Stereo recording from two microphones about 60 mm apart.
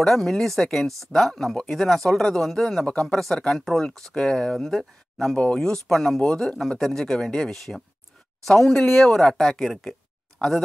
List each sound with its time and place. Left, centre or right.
0.0 s speech: centre
5.3 s speech: centre
5.6 s speech: centre
6.7 s speech: centre